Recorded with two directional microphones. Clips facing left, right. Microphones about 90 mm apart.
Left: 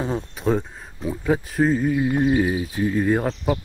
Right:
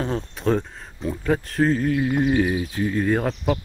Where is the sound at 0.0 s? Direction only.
5° left (ahead or behind).